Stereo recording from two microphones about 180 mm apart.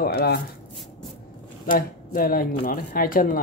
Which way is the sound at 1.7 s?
55° left (ahead or behind).